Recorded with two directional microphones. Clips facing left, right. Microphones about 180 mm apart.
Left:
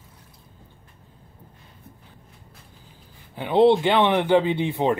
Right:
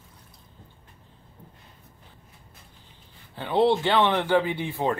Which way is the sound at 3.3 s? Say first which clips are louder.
Left 5 dB; 20° left (ahead or behind).